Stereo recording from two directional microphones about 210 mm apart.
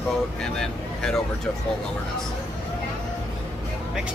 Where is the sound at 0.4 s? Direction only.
5° left (ahead or behind).